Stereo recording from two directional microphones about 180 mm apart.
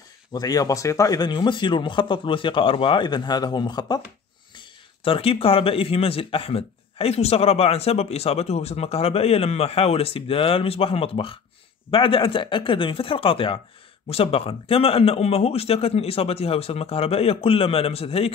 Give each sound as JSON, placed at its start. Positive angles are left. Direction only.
{"t": 0.3, "sound": "speech", "side_deg": 20}